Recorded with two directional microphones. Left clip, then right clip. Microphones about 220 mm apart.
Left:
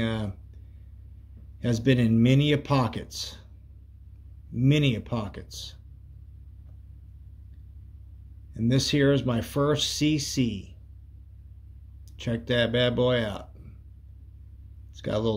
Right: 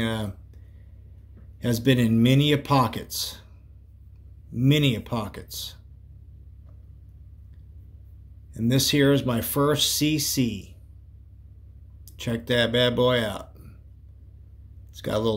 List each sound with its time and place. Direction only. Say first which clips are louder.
0.0 s speech: right 2 dB; centre (ahead or behind)
1.6 s speech: right 2 dB; centre (ahead or behind)
4.6 s speech: right 2 dB; centre (ahead or behind)
8.5 s speech: right 3 dB; centre (ahead or behind)
12.0 s speech: right 2 dB; centre (ahead or behind)
15.0 s speech: right 2 dB; centre (ahead or behind)